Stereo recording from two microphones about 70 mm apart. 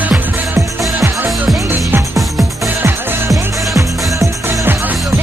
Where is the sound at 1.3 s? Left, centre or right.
Centre.